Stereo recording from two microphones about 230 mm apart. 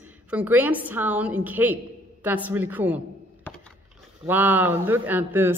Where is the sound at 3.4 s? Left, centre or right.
Centre.